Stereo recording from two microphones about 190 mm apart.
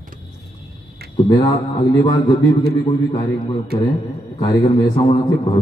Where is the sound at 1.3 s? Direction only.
20° left (ahead or behind).